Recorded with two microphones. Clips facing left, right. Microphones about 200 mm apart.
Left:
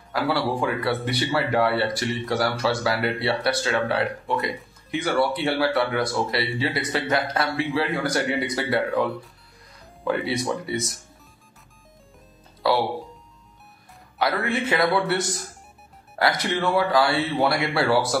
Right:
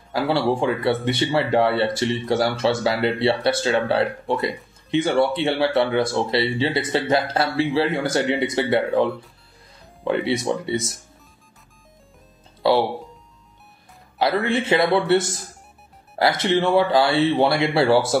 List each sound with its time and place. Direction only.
0.1 s speech: 25° right (ahead or behind)
4.9 s speech: 20° right (ahead or behind)
10.0 s speech: 20° right (ahead or behind)
12.7 s speech: centre (ahead or behind)
14.1 s speech: 25° right (ahead or behind)